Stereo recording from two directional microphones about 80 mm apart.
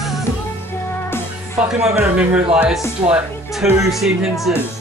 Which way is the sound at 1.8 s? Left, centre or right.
Centre.